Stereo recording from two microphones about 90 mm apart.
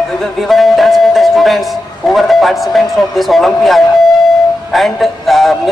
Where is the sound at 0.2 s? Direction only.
Centre (ahead or behind).